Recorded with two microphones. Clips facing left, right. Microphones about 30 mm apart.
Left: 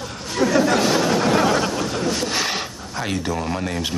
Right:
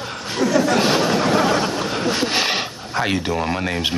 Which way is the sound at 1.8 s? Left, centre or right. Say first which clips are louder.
Right 2 dB; right.